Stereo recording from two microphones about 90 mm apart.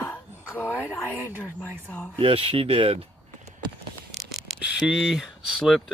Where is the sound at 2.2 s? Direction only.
90° right.